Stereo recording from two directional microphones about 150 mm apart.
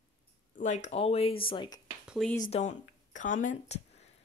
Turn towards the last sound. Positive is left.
turn(degrees=60)  # may be behind; listen again after turning